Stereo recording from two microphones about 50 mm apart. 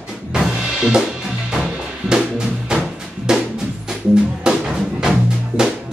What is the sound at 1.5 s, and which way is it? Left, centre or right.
Music, centre.